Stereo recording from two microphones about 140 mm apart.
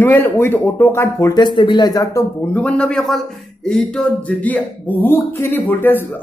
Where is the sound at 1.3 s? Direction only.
30° left (ahead or behind).